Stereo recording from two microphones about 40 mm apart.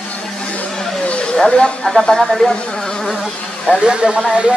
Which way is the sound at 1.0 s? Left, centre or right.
Left.